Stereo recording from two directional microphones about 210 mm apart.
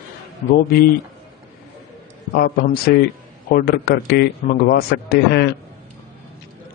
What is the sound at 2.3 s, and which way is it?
A man's voice, 45° left (ahead or behind).